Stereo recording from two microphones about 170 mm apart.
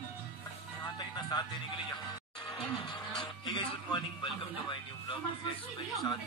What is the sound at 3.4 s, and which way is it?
Speech, 25° left (ahead or behind).